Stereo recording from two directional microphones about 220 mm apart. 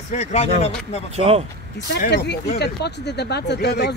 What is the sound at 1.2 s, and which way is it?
Speech, 25° right (ahead or behind).